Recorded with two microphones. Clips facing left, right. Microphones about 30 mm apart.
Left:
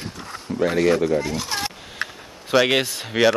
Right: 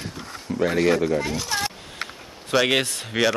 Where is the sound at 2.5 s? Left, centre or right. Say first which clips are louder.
Left 2 dB; centre.